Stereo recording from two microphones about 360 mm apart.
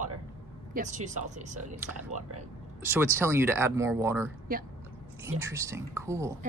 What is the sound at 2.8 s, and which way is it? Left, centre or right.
Speech, centre.